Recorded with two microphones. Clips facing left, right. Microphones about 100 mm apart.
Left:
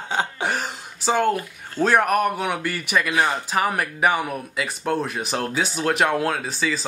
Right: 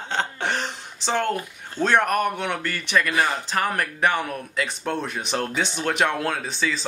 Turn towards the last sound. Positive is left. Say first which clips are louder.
# left 1 dB
turn(degrees=0)  # may be behind; listen again after turning